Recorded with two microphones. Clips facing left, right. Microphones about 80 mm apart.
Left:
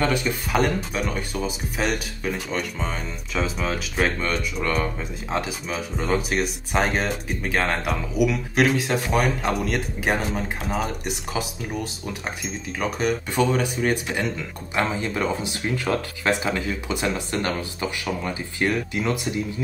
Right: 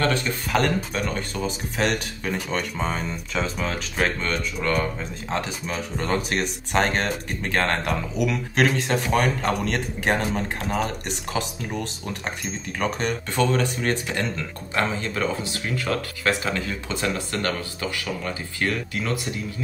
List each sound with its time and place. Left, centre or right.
0.0 s speech: centre